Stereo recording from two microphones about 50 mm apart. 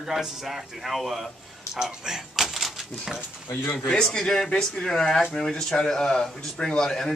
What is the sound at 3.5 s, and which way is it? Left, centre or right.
Speech, left.